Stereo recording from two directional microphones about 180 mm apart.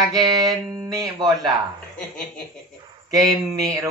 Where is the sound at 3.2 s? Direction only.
20° right (ahead or behind).